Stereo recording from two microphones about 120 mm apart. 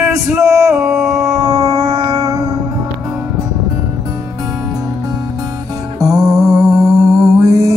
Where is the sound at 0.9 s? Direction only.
5° right (ahead or behind).